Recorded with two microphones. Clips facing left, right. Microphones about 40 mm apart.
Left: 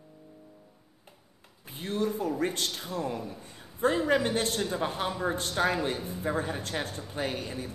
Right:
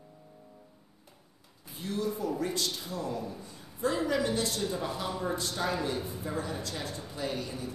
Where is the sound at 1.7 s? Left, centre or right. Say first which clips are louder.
Left 3 dB; left.